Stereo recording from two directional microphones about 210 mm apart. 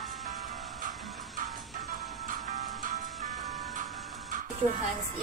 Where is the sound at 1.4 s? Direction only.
40° right (ahead or behind).